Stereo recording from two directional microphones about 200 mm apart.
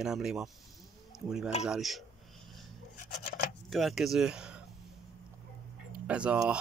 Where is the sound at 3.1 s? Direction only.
55° left (ahead or behind).